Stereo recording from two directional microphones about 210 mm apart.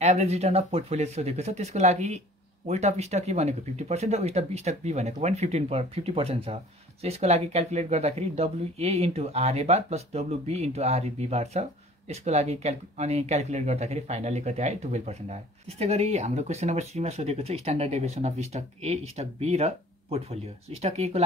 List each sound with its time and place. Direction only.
0.0 s speech: 30° right (ahead or behind)